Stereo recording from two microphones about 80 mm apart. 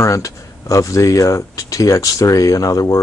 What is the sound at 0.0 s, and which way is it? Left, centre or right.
Speech, left.